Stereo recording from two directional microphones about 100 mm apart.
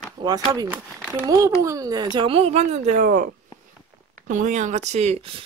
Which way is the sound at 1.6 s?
35° right (ahead or behind).